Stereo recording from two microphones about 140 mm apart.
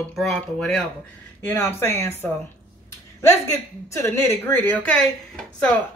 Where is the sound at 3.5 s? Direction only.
20° left (ahead or behind).